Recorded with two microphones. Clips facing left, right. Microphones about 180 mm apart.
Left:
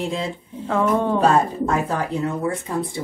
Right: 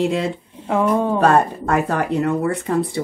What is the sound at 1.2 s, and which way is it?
Speech, 65° right (ahead or behind).